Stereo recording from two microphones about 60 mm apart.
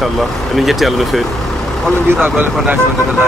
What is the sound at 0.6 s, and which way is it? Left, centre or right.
Speech, centre.